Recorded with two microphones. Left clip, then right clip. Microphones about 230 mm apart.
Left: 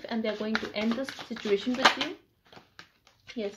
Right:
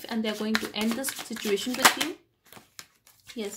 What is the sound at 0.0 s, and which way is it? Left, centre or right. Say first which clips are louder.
Speech: right 1 dB; right.